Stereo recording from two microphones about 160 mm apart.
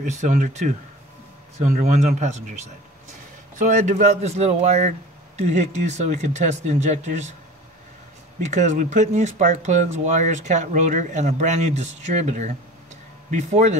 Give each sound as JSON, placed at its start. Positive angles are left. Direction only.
{"t": 0.0, "sound": "speech", "side_deg": -50}
{"t": 8.4, "sound": "speech", "side_deg": -45}